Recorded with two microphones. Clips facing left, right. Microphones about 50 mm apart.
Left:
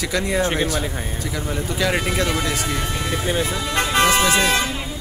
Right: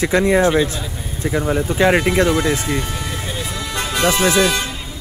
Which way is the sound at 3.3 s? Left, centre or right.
Left.